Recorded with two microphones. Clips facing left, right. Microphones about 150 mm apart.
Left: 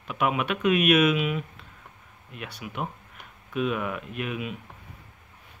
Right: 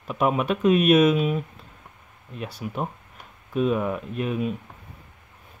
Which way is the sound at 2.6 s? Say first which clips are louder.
Right 3 dB; 40° right (ahead or behind).